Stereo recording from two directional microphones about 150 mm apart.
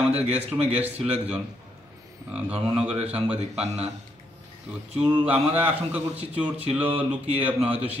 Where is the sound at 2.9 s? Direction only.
45° right (ahead or behind).